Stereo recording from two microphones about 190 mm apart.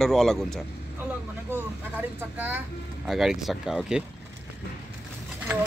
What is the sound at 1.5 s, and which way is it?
Speech, 10° right (ahead or behind).